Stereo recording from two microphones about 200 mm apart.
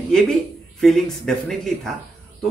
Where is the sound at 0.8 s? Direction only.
Centre (ahead or behind).